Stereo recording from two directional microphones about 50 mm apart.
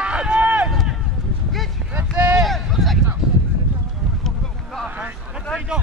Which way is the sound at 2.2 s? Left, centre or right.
Right.